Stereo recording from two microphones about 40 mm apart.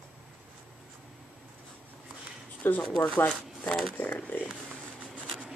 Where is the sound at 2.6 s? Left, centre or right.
Left.